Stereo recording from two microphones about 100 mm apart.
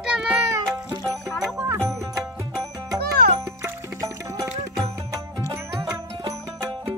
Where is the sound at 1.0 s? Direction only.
5° left (ahead or behind).